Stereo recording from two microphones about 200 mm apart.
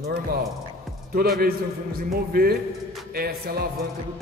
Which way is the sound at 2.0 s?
50° right (ahead or behind).